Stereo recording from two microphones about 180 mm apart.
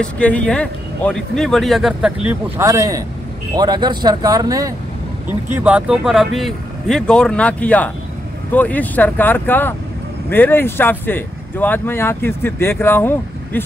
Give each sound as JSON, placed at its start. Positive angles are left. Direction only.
{"t": 0.0, "sound": "speech", "side_deg": 5}
{"t": 2.6, "sound": "speech", "side_deg": -20}
{"t": 5.6, "sound": "speech", "side_deg": -5}